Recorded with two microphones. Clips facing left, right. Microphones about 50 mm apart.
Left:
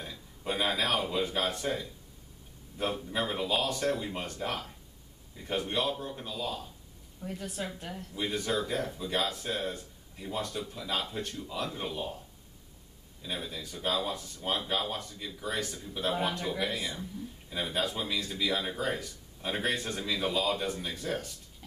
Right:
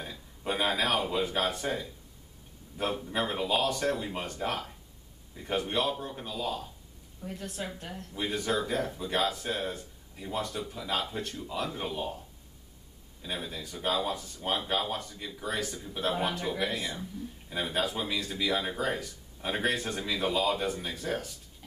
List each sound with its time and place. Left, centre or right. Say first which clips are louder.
0.0 s a man's voice: right 1 dB; centre
13.2 s a man's voice: right 1 dB; centre